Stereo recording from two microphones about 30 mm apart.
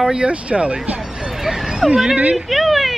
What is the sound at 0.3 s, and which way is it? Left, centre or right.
Speech, right.